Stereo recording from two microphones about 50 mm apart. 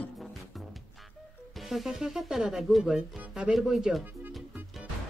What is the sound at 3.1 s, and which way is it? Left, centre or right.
Music, centre.